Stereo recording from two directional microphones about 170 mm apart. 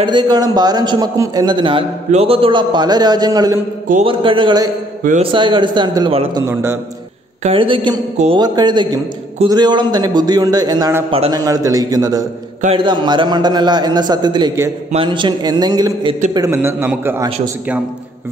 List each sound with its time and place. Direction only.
0.0 s a man's voice: 25° right (ahead or behind)
6.4 s a man's voice: 15° right (ahead or behind)
7.4 s a man's voice: 30° right (ahead or behind)
11.1 s a man's voice: 30° right (ahead or behind)
11.4 s a man's voice: 20° right (ahead or behind)
16.3 s a man's voice: 15° right (ahead or behind)